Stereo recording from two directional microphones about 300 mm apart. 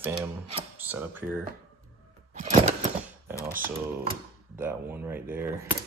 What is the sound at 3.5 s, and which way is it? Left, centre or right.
Speech, right.